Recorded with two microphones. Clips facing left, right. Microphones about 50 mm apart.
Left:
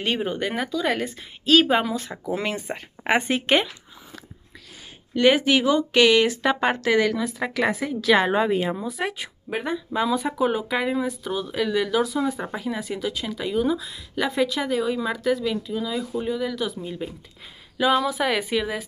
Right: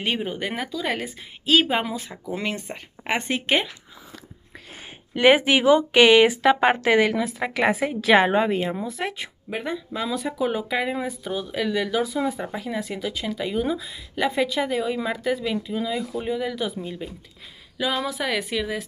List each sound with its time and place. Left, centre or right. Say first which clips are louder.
0.2 s speech: left 2 dB; centre
2.3 s speech: left 1 dB; centre
3.0 s speech: left 4 dB; centre
3.3 s speech: left 2 dB; centre
5.1 s speech: right 1 dB; right
7.2 s speech: right 1 dB; centre
8.3 s speech: even; centre
17.0 s speech: left 2 dB; centre